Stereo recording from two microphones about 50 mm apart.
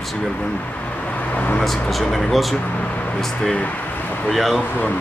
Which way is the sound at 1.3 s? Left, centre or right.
Left.